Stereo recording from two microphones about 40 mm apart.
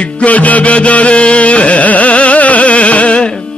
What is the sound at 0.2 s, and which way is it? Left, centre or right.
Music, left.